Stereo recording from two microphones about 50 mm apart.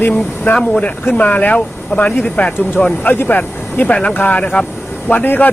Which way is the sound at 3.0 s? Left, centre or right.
Left.